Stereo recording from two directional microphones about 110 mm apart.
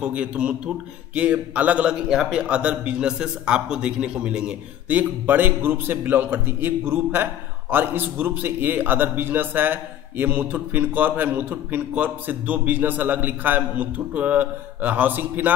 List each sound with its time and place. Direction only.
0.0 s a man's voice: 10° right (ahead or behind)